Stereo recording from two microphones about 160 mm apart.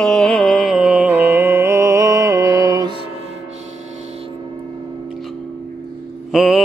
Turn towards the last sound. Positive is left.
turn(degrees=0)  # may be behind; listen again after turning